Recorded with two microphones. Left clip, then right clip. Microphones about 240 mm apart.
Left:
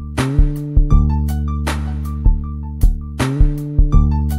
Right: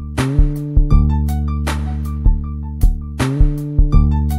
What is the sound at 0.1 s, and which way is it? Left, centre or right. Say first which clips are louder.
Music: even; centre.